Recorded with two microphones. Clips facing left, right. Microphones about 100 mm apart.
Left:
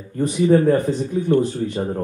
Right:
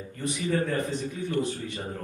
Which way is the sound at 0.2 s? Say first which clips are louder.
Left 12 dB; 40° left (ahead or behind).